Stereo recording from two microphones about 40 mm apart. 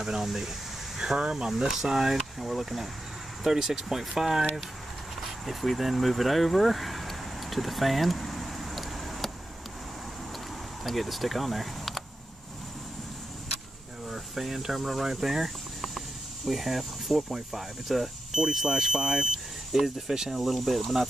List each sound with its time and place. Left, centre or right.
0.0 s speech: centre
0.9 s speech: centre
1.5 s speech: centre
5.4 s a sound: centre
10.8 s speech: centre
14.1 s speech: centre
15.4 s a sound: centre
16.4 s speech: centre